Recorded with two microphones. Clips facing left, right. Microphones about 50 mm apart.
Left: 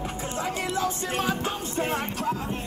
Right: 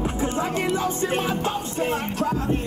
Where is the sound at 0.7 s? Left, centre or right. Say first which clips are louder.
Right 4 dB; right.